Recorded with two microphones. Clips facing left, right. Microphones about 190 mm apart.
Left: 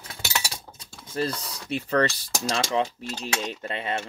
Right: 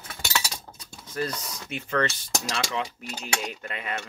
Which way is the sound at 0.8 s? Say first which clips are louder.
Left 3 dB; 30° left (ahead or behind).